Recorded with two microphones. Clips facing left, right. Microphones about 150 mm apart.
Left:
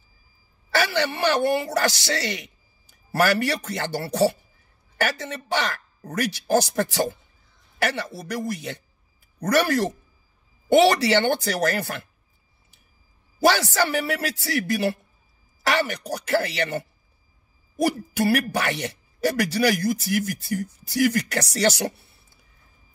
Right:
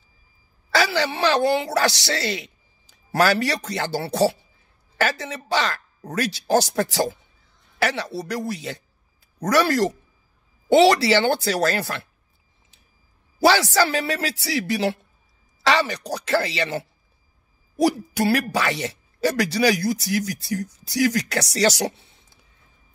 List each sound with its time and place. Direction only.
0.7 s a man's voice: 90° right
13.4 s a man's voice: 90° right
18.1 s a man's voice: 90° right